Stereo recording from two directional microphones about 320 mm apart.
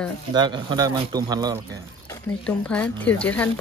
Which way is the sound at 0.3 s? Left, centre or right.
Centre.